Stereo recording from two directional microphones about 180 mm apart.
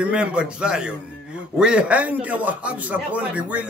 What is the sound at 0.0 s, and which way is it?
A man's voice, 5° right (ahead or behind).